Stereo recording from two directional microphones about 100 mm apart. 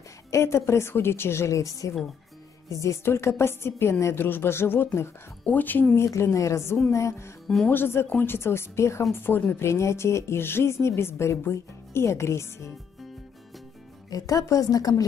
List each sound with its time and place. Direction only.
0.3 s speech: 25° left (ahead or behind)
6.0 s a woman's voice: 30° left (ahead or behind)
7.4 s speech: 5° left (ahead or behind)
7.7 s speech: 25° left (ahead or behind)
14.1 s a woman's voice: 35° left (ahead or behind)